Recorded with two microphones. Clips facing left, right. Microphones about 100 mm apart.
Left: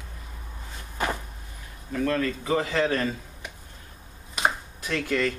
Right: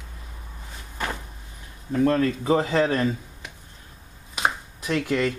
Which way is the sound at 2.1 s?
30° right (ahead or behind).